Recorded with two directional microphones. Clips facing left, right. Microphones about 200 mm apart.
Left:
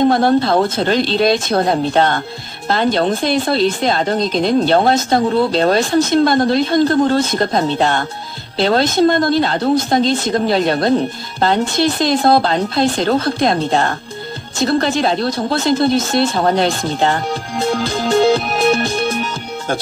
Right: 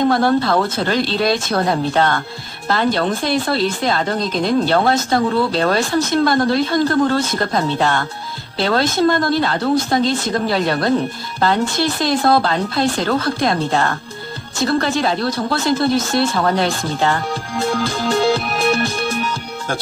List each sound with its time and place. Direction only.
0.1 s speech: 20° left (ahead or behind)